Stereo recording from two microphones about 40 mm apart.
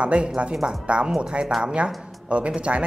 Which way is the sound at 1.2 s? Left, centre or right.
Right.